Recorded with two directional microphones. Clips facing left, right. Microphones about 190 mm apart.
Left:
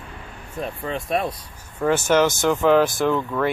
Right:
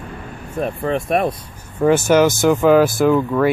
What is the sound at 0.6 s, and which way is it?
Speech, 60° right (ahead or behind).